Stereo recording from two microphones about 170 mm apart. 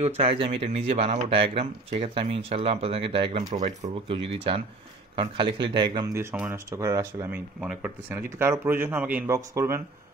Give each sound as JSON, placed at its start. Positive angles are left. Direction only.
{"t": 0.0, "sound": "speech", "side_deg": -35}
{"t": 3.5, "sound": "speech", "side_deg": -45}
{"t": 6.3, "sound": "speech", "side_deg": -5}
{"t": 6.7, "sound": "speech", "side_deg": -15}